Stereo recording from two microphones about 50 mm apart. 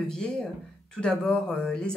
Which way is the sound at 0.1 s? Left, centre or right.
Centre.